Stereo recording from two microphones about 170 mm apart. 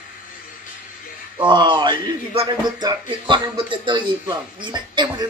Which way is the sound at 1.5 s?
25° right (ahead or behind).